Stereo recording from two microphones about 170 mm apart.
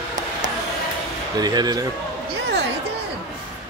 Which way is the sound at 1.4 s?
25° right (ahead or behind).